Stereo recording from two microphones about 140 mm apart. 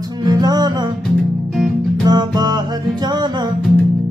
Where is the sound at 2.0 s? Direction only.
30° right (ahead or behind).